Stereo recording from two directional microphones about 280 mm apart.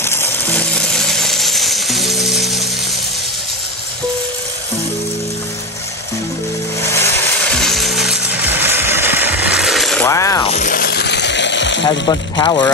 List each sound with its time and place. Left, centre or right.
0.0 s coin: centre
7.5 s music: centre
10.5 s music: left
11.8 s speech: centre